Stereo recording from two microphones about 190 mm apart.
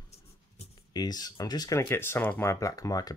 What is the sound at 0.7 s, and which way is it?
Speech, 20° left (ahead or behind).